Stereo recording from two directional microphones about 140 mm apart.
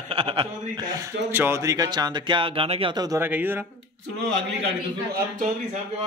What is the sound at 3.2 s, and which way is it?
Speech, 15° right (ahead or behind).